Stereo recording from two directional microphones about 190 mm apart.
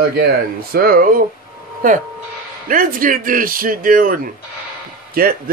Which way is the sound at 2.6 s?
45° right (ahead or behind).